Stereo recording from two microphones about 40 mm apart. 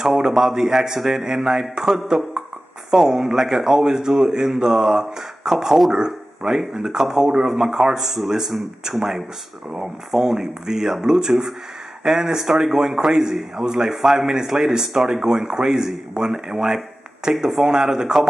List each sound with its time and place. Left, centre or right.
0.2 s a man's voice: centre
16.6 s a sound: centre
17.3 s a man's voice: centre